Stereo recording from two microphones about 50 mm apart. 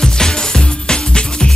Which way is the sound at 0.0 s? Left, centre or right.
Centre.